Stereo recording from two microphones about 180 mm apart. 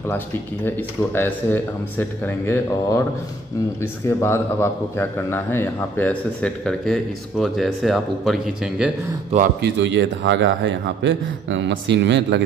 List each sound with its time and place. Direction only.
0.7 s a man's voice: 10° left (ahead or behind)
9.6 s a man's voice: 85° right